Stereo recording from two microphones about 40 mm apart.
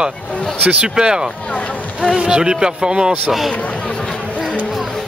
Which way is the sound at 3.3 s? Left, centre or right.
Centre.